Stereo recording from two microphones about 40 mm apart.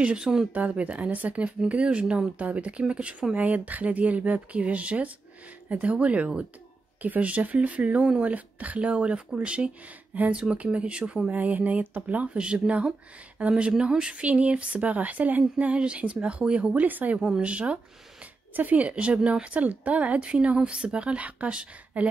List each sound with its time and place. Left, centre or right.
0.2 s speech: centre
0.5 s speech: right
11.2 s speech: right
12.4 s speech: right
15.8 s speech: right
16.7 s speech: right
17.4 s speech: right